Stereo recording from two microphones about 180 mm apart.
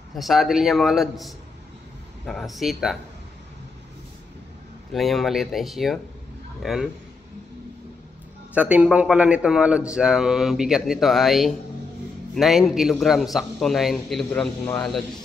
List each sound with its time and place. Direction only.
0.1 s speech: centre (ahead or behind)
4.9 s speech: centre (ahead or behind)
8.5 s speech: 10° right (ahead or behind)